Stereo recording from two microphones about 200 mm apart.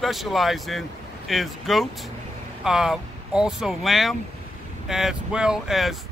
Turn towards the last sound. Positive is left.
turn(degrees=0)  # may be behind; listen again after turning